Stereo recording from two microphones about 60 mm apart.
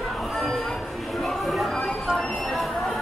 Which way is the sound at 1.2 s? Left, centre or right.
Centre.